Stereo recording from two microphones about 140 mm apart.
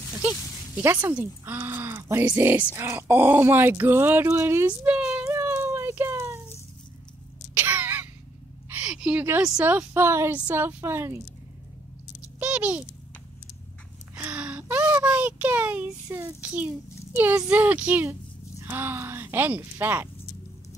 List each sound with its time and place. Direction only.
0.1 s speech: 10° right (ahead or behind)
7.5 s a sound: 10° right (ahead or behind)
9.4 s speech: 10° right (ahead or behind)
12.4 s patter: 10° right (ahead or behind)
14.1 s a sound: 10° right (ahead or behind)
16.4 s a child's voice: 10° right (ahead or behind)